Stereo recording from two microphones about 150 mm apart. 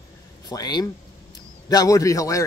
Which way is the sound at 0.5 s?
25° left (ahead or behind).